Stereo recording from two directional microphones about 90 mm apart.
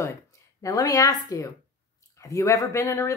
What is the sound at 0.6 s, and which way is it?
A woman's voice, 40° left (ahead or behind).